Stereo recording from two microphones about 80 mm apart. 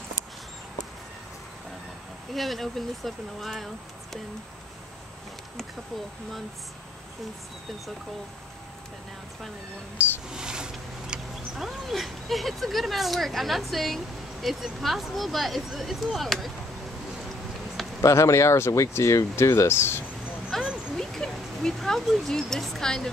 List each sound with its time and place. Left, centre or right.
2.3 s speech: centre
10.3 s speech: centre
18.0 s speech: left
20.6 s a sound: centre